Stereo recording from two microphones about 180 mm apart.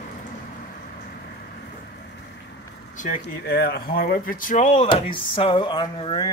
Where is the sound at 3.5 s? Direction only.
65° left (ahead or behind); by 4.9 s 40° left (ahead or behind).